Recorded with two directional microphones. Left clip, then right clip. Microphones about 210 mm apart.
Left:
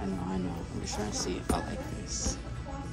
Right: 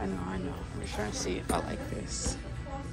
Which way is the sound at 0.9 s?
15° left (ahead or behind).